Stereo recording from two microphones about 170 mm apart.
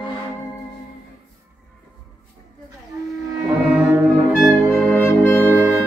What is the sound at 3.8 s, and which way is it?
Brass instrument, 10° right (ahead or behind).